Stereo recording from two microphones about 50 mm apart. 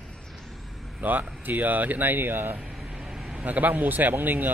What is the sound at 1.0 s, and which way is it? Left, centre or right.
Speech, right.